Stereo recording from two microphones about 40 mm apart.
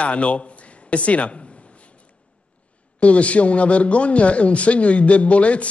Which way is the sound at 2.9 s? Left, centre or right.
Left.